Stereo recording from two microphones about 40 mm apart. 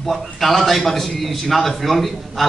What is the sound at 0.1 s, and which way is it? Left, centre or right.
A man's voice, centre.